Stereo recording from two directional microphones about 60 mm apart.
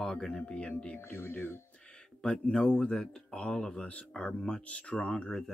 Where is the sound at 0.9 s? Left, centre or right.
Left.